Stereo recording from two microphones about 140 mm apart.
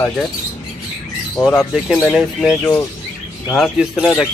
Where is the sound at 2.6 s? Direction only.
20° left (ahead or behind).